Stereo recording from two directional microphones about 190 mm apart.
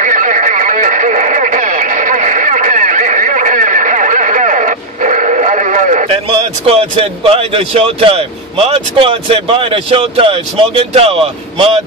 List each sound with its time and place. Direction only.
0.0 s radio: 45° right (ahead or behind)